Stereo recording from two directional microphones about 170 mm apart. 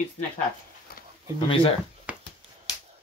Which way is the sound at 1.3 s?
30° left (ahead or behind).